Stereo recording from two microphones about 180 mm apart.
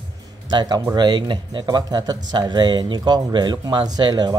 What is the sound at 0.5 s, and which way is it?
Speech, 25° right (ahead or behind).